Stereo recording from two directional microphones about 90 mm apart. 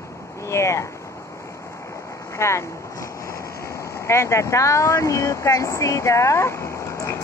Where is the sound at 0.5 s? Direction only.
30° left (ahead or behind).